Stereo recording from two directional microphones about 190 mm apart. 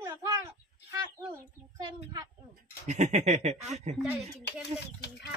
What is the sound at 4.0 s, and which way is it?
Speech, 5° right (ahead or behind).